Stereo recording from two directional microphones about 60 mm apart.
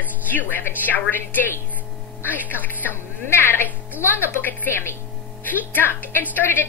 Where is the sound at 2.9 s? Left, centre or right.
Left.